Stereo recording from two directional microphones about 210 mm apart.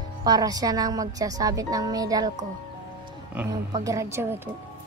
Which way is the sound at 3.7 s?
15° right (ahead or behind).